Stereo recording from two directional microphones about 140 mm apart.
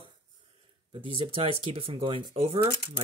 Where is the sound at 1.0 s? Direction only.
40° right (ahead or behind).